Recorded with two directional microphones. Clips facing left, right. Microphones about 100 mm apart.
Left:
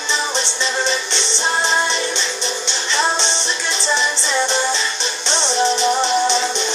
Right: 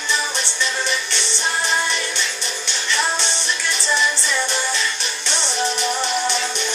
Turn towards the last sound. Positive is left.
turn(degrees=25)  # may be behind; listen again after turning